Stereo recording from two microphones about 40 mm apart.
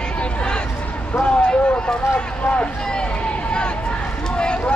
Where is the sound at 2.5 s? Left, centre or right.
Left.